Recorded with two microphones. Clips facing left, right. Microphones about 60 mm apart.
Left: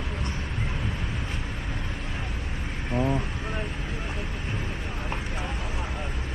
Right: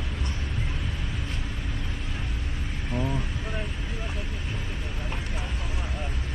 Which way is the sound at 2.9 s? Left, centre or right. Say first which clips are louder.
Left 4 dB; centre.